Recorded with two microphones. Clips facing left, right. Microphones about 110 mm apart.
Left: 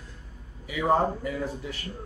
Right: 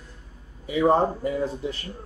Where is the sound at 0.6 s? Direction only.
30° right (ahead or behind).